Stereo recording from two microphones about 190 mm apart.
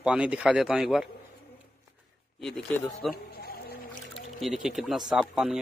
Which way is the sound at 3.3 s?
50° left (ahead or behind).